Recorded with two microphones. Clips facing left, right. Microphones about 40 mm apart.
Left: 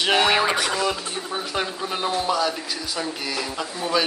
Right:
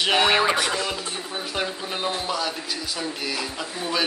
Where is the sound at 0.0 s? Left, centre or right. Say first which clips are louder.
Even; centre.